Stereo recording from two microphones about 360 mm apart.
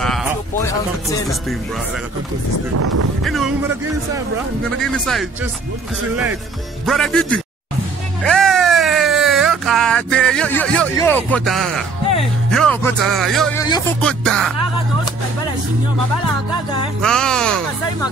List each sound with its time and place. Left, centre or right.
0.0 s a sound: centre
2.7 s speech: right
3.3 s music: centre
4.9 s music: centre
6.9 s music: centre
8.2 s a sound: centre
12.4 s music: centre
17.0 s music: centre